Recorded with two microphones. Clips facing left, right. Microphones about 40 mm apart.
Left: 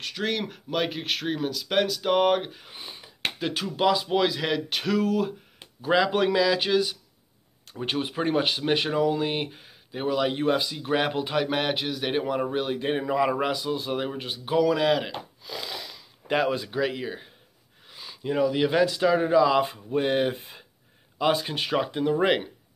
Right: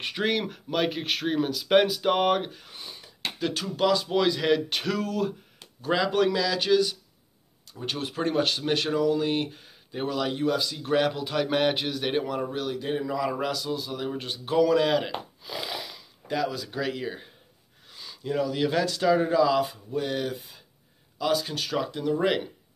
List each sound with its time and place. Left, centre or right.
0.0 s speech: centre
0.3 s speech: centre
10.3 s a man's voice: left
10.7 s speech: centre
11.4 s a man's voice: centre; by 13.3 s left
13.3 s a man's voice: left
13.7 s speech: left
14.1 s speech: centre
16.3 s speech: left
16.7 s speech: centre
19.6 s a man's voice: left